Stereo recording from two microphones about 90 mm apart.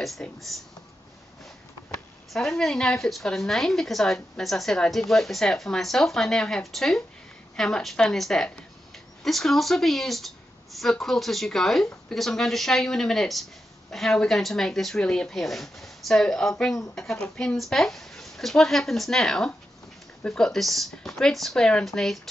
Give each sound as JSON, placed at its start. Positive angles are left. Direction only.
{"t": 0.0, "sound": "a woman's voice", "side_deg": 0}
{"t": 2.3, "sound": "a woman's voice", "side_deg": 5}